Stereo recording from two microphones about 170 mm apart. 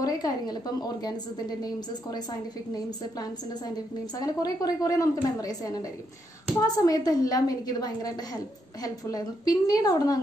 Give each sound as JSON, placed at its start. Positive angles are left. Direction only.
{"t": 0.0, "sound": "a woman's voice", "side_deg": 20}